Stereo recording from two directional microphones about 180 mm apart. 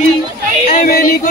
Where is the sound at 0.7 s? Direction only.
50° left (ahead or behind).